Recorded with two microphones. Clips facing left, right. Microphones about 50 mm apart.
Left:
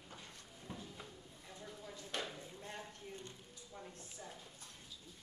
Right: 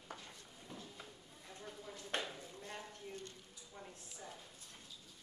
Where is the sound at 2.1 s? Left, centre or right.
Right.